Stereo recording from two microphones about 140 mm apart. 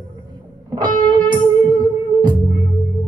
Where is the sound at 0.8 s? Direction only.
35° right (ahead or behind).